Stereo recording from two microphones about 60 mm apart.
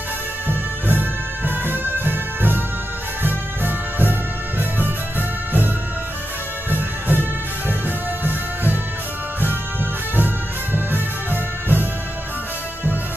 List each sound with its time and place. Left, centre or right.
0.9 s music: right
6.7 s music: right
10.1 s music: right